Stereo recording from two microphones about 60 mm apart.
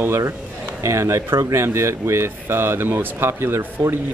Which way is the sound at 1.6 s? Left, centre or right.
Right.